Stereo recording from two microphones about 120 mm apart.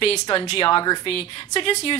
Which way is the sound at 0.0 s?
50° left (ahead or behind).